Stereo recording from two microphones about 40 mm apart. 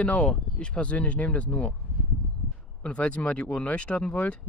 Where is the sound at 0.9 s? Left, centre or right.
Left.